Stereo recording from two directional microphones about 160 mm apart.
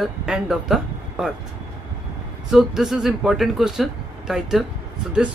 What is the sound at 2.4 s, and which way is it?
Speech, 5° right (ahead or behind).